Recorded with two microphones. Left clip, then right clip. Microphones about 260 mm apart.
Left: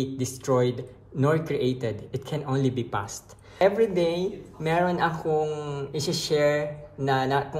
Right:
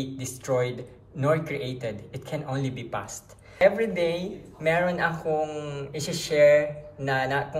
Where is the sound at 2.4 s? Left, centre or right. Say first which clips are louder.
Left 5 dB; left.